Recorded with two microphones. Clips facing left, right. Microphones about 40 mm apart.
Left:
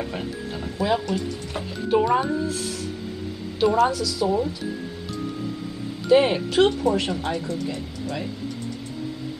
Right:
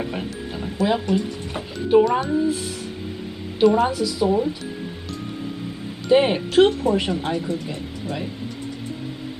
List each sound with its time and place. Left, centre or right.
0.1 s speech: centre
2.0 s speech: centre
2.3 s speech: centre
3.7 s speech: right
6.0 s speech: centre